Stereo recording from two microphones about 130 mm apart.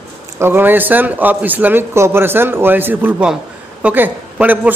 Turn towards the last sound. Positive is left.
turn(degrees=-10)  # may be behind; listen again after turning